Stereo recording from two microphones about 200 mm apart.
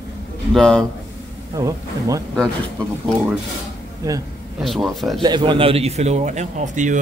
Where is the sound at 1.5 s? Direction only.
15° right (ahead or behind).